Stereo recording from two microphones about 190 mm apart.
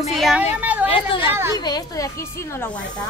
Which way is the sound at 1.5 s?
20° left (ahead or behind).